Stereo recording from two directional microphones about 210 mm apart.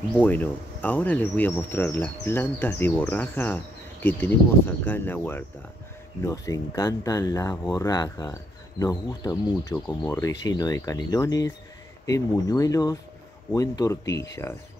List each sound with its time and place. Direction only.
0.2 s speech: 10° left (ahead or behind)